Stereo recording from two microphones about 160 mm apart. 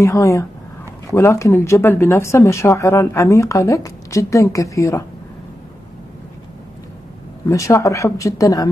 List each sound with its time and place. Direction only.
0.0 s speech: 20° left (ahead or behind)
7.4 s speech: 20° left (ahead or behind)